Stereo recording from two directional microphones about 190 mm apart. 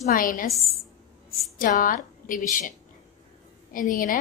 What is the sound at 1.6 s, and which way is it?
A woman's voice, 45° left (ahead or behind).